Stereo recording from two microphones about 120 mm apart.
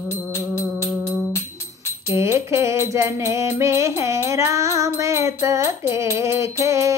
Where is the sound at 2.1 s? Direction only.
20° right (ahead or behind).